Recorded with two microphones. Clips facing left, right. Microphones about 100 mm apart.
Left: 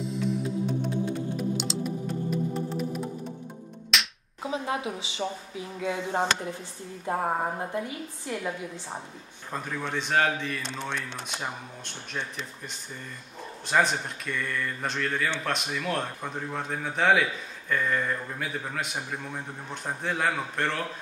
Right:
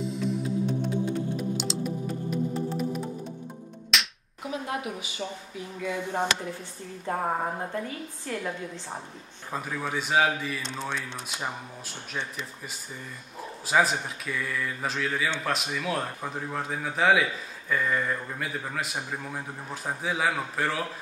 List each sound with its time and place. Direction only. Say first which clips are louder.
0.0 s music: even; centre (ahead or behind)
3.9 s music: even; centre (ahead or behind)
4.4 s speech: left 2 dB; 25° left (ahead or behind)
7.1 s a woman's voice: left 1 dB; 5° left (ahead or behind)
9.5 s a man's voice: right 1 dB; 5° right (ahead or behind)